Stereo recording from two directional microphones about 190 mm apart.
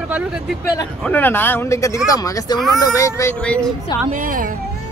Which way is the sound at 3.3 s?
5° left (ahead or behind).